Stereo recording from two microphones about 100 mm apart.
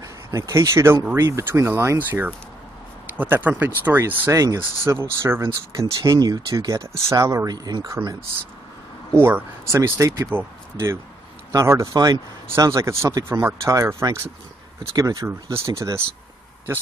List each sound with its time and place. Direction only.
0.0 s speech: 30° right (ahead or behind)
4.3 s speech: 35° right (ahead or behind)
6.0 s speech: 40° right (ahead or behind)
9.1 s speech: 25° right (ahead or behind)